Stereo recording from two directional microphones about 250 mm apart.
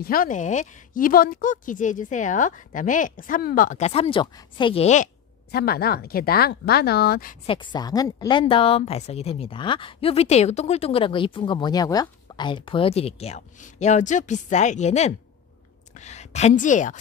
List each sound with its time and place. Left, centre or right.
0.0 s a woman's voice: left
7.4 s a woman's voice: centre